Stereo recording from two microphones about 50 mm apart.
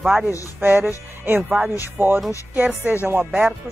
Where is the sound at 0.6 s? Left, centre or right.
Right.